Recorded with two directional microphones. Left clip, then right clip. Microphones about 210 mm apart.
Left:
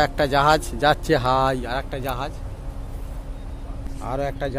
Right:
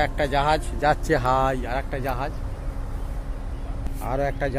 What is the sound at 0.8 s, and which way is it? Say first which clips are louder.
Speech: left 2 dB; 30° left (ahead or behind).